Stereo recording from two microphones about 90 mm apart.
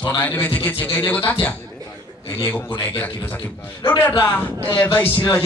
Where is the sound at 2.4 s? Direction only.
25° left (ahead or behind).